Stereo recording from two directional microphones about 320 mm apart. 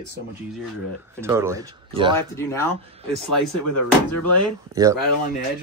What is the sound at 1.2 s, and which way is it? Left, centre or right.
Speech, centre.